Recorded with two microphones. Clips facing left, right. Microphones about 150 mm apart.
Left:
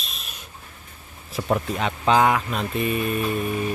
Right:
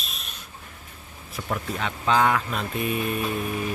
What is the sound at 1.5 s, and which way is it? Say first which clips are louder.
Speech: left 5 dB; 20° left (ahead or behind).